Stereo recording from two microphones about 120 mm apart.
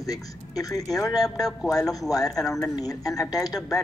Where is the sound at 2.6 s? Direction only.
30° left (ahead or behind).